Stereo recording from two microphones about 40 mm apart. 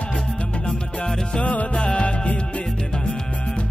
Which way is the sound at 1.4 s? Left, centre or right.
Left.